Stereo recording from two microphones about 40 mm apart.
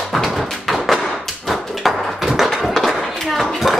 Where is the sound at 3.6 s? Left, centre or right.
Centre.